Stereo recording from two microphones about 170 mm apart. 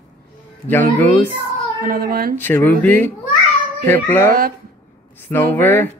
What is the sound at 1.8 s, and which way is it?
Speech, 60° right (ahead or behind).